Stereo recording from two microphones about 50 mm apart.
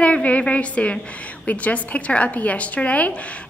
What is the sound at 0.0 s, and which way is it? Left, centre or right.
A woman's voice, left.